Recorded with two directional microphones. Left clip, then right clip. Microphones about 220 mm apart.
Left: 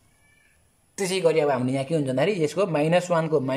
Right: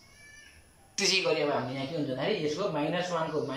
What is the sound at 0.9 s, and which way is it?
A man's voice, 35° left (ahead or behind).